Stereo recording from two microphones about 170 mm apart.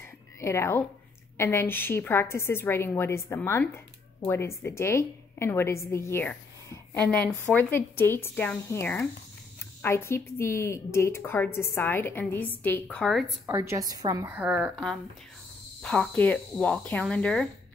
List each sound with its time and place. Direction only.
0.0 s a sound: 15° left (ahead or behind)
1.4 s a woman's voice: 15° left (ahead or behind)
13.5 s a woman's voice: 15° right (ahead or behind); by 17.5 s 5° left (ahead or behind)